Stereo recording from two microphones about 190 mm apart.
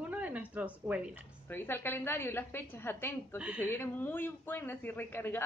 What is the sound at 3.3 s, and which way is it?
Speech, 5° right (ahead or behind).